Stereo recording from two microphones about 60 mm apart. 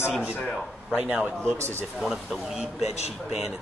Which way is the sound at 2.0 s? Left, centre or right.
Centre.